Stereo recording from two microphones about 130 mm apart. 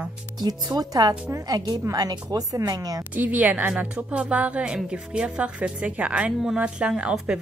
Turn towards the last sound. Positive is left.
turn(degrees=-10)  # may be behind; listen again after turning